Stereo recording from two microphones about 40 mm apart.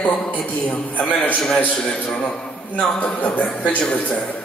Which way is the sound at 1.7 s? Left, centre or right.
Left.